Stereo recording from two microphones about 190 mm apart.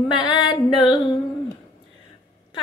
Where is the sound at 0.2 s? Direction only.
25° left (ahead or behind).